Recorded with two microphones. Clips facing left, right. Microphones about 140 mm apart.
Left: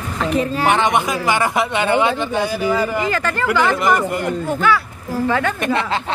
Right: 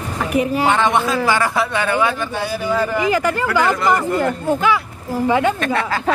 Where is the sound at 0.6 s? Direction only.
15° left (ahead or behind).